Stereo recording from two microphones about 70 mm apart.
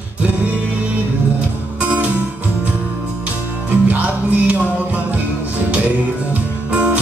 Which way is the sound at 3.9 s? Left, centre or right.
Right.